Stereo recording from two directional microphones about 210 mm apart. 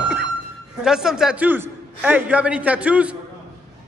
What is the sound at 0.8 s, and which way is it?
A man's voice, 5° right (ahead or behind).